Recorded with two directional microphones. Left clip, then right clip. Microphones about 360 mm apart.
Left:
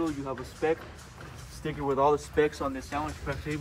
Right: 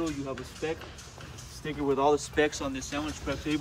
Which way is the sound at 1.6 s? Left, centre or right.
Centre.